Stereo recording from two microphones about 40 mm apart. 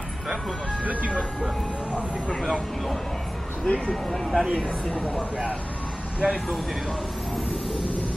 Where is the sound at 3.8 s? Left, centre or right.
Centre.